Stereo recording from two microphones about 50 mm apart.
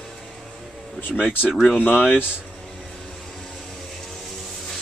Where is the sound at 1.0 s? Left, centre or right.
Left.